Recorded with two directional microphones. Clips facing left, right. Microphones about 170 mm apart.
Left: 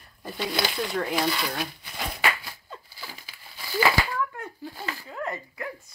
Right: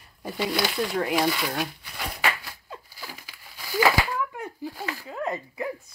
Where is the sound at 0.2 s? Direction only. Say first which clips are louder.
Right 2 dB; 10° right (ahead or behind).